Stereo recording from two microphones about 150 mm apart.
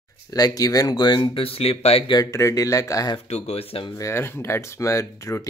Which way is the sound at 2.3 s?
20° left (ahead or behind).